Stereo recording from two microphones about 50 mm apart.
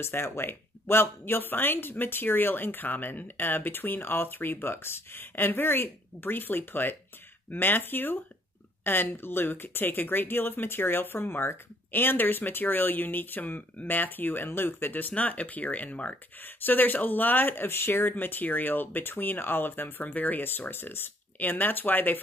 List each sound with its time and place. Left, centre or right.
0.0 s speech: left
16.3 s speech: left
20.4 s speech: left